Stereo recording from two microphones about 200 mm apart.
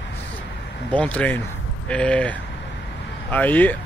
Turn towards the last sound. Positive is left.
turn(degrees=10)  # may be behind; listen again after turning